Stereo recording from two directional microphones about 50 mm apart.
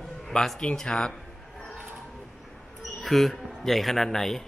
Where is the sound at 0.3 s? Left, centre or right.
Centre.